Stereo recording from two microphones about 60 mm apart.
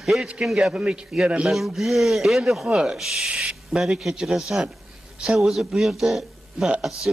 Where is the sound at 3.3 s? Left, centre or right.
Centre.